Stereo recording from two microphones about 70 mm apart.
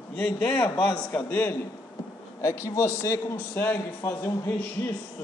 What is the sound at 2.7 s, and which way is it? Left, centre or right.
Speech, left.